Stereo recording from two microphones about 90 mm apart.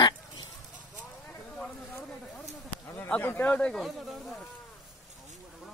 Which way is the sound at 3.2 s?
25° left (ahead or behind).